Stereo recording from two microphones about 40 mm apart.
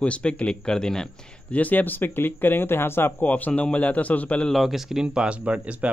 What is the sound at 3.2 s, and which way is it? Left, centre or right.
A man's voice, left.